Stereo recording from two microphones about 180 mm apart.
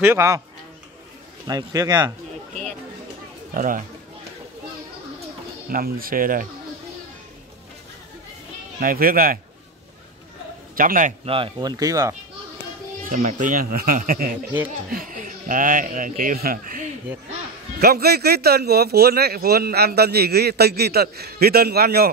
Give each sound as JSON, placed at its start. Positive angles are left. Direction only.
{"t": 0.0, "sound": "speech", "side_deg": -15}
{"t": 1.5, "sound": "speech", "side_deg": -20}
{"t": 3.5, "sound": "a man's voice", "side_deg": -50}
{"t": 5.7, "sound": "a man's voice", "side_deg": -55}
{"t": 8.7, "sound": "a man's voice", "side_deg": -55}
{"t": 10.8, "sound": "a man's voice", "side_deg": -50}
{"t": 11.2, "sound": "speech", "side_deg": -30}
{"t": 13.0, "sound": "a man's voice", "side_deg": -45}
{"t": 17.7, "sound": "speech", "side_deg": -60}